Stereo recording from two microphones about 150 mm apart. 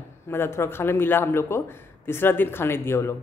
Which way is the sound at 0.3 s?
15° left (ahead or behind).